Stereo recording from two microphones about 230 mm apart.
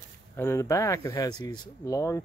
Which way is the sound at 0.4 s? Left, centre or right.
Centre.